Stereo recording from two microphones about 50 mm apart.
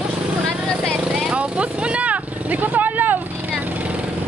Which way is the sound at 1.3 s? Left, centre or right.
Right.